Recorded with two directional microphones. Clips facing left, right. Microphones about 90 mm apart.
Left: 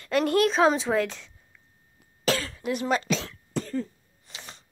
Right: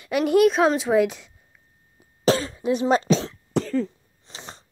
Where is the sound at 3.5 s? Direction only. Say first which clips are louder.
Right 6 dB; 90° right.